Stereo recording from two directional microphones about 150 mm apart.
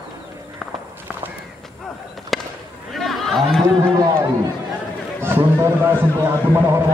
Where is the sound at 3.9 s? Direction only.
20° right (ahead or behind).